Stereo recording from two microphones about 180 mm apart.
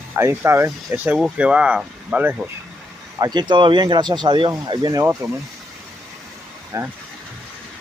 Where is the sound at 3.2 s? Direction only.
25° right (ahead or behind).